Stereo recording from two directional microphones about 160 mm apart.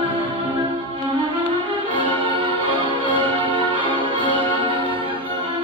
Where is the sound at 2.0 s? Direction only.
30° right (ahead or behind).